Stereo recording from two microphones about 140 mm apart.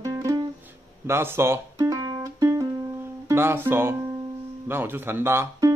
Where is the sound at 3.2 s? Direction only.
15° right (ahead or behind).